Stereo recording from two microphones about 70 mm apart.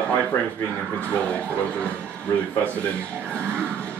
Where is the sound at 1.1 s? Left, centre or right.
Centre.